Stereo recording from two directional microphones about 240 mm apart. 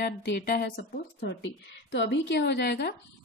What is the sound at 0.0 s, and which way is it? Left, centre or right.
Speech, left.